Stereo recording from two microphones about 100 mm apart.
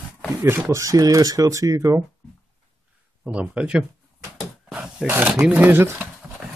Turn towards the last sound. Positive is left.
turn(degrees=-25)  # may be behind; listen again after turning